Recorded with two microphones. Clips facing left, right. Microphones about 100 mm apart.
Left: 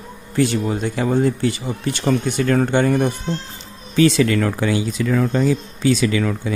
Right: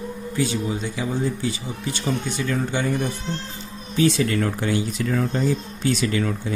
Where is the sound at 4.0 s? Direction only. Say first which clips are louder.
Left 5 dB; 90° left.